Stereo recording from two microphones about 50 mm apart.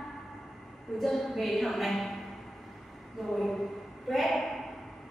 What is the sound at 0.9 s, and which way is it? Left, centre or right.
A woman's voice, centre.